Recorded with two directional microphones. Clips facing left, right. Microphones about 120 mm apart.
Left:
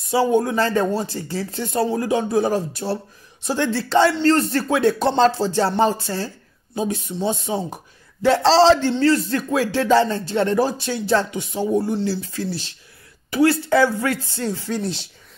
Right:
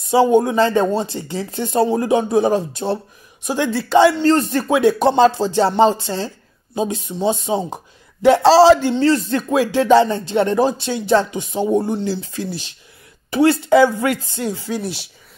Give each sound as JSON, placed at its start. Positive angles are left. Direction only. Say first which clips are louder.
{"t": 0.1, "sound": "speech", "louder": "right 4 dB", "side_deg": -20}